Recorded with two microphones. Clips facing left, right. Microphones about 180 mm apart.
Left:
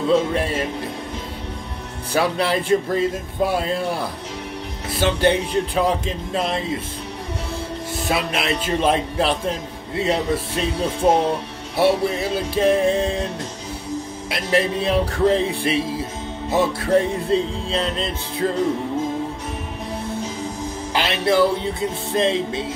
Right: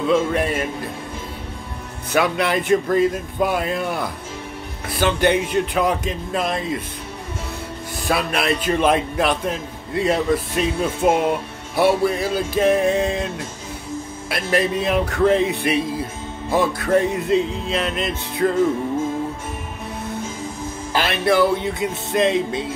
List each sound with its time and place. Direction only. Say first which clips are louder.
0.1 s music: even; 30° left (ahead or behind)
2.1 s speech: right 1 dB; 30° left (ahead or behind)
4.9 s music: even; 30° left (ahead or behind)
8.1 s music: right 2 dB; 20° left (ahead or behind)
10.3 s speech: right 2 dB; 30° left (ahead or behind)
11.8 s music: right 1 dB; 25° left (ahead or behind)
14.3 s music: even; 30° left (ahead or behind)
20.9 s music: right 1 dB; 20° left (ahead or behind)